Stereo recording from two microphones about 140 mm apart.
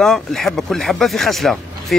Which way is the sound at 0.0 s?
Centre (ahead or behind).